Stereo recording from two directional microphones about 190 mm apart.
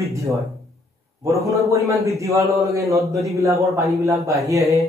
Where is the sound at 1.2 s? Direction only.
15° right (ahead or behind).